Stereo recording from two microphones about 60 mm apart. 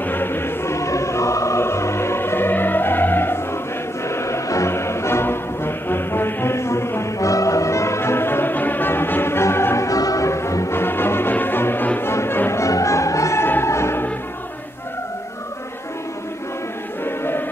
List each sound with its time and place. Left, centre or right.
0.0 s music: left
4.1 s music: left
7.2 s music: left
9.8 s music: left
10.8 s music: left
13.4 s music: left
17.0 s music: left